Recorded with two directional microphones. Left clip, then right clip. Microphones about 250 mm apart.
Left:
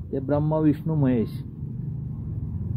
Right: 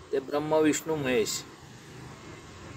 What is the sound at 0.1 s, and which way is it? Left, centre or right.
Speech, centre.